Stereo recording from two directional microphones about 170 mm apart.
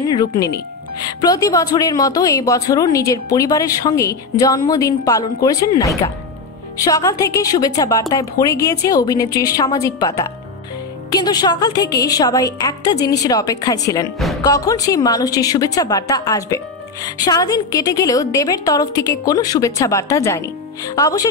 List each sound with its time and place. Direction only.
0.0 s a woman's voice: 25° left (ahead or behind)